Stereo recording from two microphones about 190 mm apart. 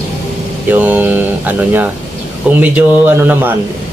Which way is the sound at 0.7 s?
10° right (ahead or behind).